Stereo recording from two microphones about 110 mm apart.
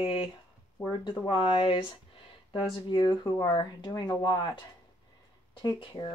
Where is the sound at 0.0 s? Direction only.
50° left (ahead or behind).